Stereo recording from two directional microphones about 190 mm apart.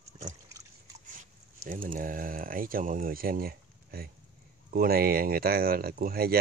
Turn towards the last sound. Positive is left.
turn(degrees=-50)  # may be behind; listen again after turning